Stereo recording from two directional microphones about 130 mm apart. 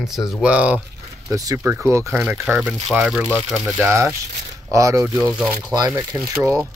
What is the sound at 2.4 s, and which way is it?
Speech, 5° right (ahead or behind).